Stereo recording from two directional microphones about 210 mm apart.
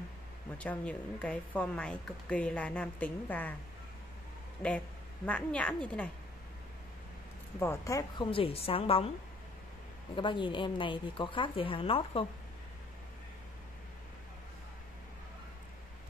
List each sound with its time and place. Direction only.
0.6 s a woman's voice: 5° left (ahead or behind)
4.6 s a woman's voice: 5° left (ahead or behind)
7.5 s a woman's voice: 10° left (ahead or behind); by 9.1 s 25° left (ahead or behind)
10.1 s a woman's voice: 25° left (ahead or behind)